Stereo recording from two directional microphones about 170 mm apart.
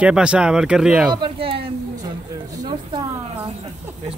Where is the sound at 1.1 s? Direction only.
30° right (ahead or behind).